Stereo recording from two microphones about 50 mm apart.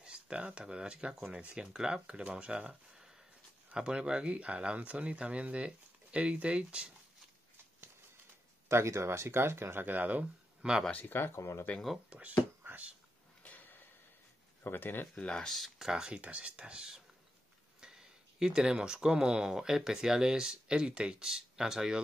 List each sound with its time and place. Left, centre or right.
0.0 s speech: centre
3.7 s speech: centre
8.6 s speech: right
9.8 s speech: right
10.2 s a sound: centre
10.9 s speech: left
11.1 s speech: left
12.1 s speech: right
13.4 s a sound: left
14.6 s speech: left
15.1 s speech: centre
15.8 s speech: centre
16.2 s speech: right